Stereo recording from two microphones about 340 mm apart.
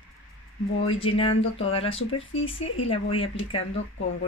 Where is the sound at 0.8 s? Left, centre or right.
Centre.